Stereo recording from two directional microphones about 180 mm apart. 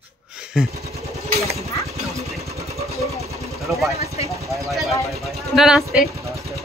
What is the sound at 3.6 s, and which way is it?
Speech, centre (ahead or behind).